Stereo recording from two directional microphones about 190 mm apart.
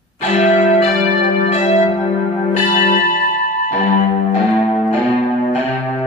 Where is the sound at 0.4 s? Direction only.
35° left (ahead or behind).